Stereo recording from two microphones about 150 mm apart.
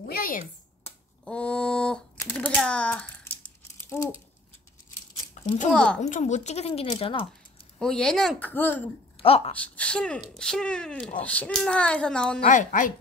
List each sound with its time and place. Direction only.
0.0 s a sound: 80° left
0.8 s a sound: 10° left (ahead or behind)
5.7 s speech: 5° left (ahead or behind)
5.9 s speech: 55° left (ahead or behind); by 7.2 s 40° left (ahead or behind)
7.8 s a child's voice: 5° left (ahead or behind)
9.1 s speech: 40° left (ahead or behind)
9.6 s a child's voice: 10° left (ahead or behind)
12.4 s a woman's voice: 60° left (ahead or behind)